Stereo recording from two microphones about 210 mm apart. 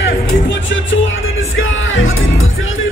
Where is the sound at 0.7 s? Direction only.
70° left (ahead or behind).